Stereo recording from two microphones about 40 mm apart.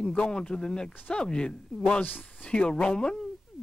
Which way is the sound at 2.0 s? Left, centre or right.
Left.